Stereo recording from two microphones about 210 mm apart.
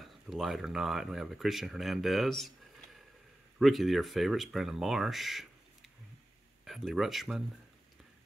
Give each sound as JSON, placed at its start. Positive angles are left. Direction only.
{"t": 0.0, "sound": "speech", "side_deg": 0}
{"t": 6.6, "sound": "speech", "side_deg": 0}